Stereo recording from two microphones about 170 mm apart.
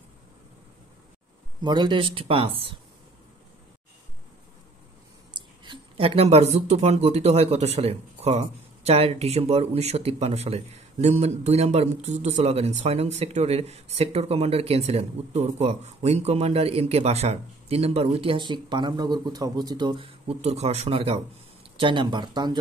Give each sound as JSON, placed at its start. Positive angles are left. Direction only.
{"t": 1.6, "sound": "speech", "side_deg": -25}
{"t": 5.3, "sound": "speech", "side_deg": -30}